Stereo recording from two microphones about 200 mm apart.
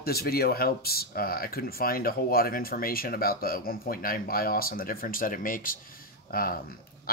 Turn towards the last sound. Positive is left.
turn(degrees=45)  # may be behind; listen again after turning